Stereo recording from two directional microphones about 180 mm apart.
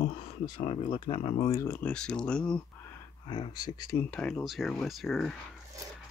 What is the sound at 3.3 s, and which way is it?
Speech, 25° left (ahead or behind).